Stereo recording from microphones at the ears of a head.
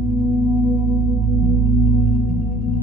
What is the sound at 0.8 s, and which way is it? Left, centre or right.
Singing bowl, left.